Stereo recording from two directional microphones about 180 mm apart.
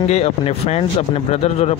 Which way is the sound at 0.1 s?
35° left (ahead or behind).